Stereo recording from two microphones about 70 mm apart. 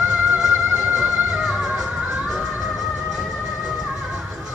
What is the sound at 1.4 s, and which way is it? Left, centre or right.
Music, centre.